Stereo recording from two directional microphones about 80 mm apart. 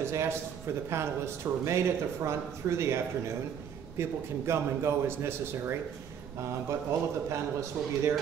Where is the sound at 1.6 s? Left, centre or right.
Right.